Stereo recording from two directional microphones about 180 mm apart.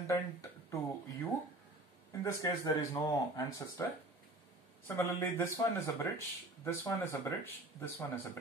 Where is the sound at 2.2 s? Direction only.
15° left (ahead or behind).